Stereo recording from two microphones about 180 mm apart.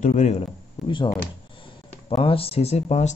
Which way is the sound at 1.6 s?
30° left (ahead or behind).